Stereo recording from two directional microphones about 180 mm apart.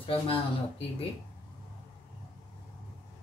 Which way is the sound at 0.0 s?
30° left (ahead or behind).